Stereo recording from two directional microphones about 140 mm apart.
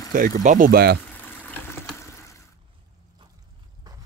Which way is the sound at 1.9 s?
20° left (ahead or behind).